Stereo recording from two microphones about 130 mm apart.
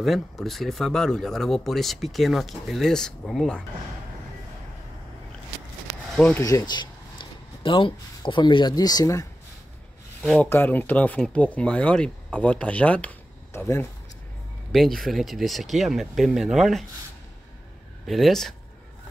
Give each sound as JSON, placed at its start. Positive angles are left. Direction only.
{"t": 0.0, "sound": "speech", "side_deg": 0}
{"t": 6.1, "sound": "speech", "side_deg": 10}
{"t": 6.4, "sound": "speech", "side_deg": 30}
{"t": 10.4, "sound": "speech", "side_deg": 15}
{"t": 14.7, "sound": "speech", "side_deg": 0}
{"t": 18.0, "sound": "speech", "side_deg": 0}